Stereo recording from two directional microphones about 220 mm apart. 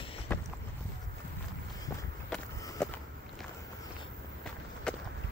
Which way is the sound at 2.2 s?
5° left (ahead or behind).